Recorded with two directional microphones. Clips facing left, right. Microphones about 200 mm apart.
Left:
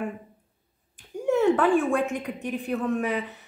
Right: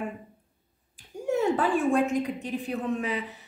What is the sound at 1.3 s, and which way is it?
A woman's voice, 65° left (ahead or behind).